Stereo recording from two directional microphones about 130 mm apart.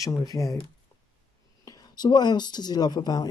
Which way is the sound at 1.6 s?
30° left (ahead or behind).